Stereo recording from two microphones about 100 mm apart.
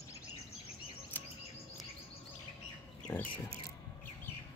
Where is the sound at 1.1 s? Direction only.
20° left (ahead or behind).